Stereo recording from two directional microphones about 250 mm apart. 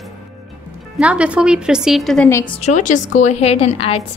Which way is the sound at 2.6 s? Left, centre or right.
Left.